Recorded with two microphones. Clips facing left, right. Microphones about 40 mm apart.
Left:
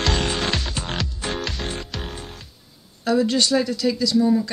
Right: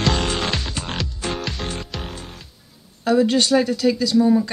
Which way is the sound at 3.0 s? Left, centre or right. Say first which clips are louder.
Right 2 dB; centre.